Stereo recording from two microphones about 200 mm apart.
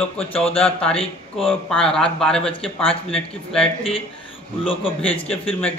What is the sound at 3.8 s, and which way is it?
Speech, 30° left (ahead or behind).